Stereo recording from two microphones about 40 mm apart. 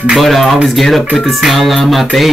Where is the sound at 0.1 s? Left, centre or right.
Centre.